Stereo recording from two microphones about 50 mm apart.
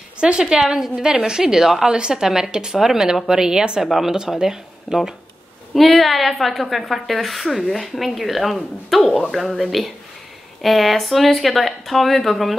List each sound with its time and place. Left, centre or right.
0.2 s a woman's voice: centre
5.8 s a woman's voice: centre